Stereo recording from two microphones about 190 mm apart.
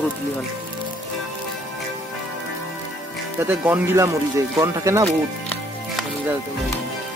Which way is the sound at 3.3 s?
10° right (ahead or behind).